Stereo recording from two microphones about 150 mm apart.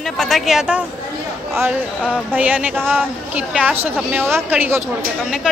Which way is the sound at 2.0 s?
5° left (ahead or behind).